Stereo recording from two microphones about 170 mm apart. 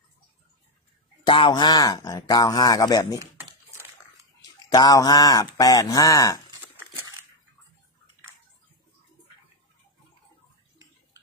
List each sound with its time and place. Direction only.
1.2 s speech: 30° left (ahead or behind)
4.4 s speech: 20° left (ahead or behind)